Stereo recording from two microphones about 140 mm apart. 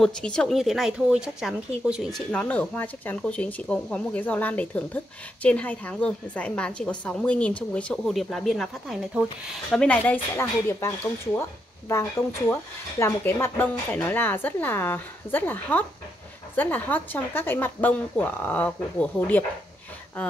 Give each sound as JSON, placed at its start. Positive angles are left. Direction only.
{"t": 0.0, "sound": "speech", "side_deg": 5}
{"t": 11.9, "sound": "speech", "side_deg": 20}